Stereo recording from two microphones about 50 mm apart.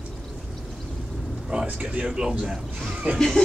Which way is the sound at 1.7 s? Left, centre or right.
Right.